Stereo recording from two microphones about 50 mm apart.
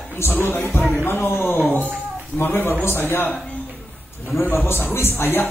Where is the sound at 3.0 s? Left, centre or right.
Left.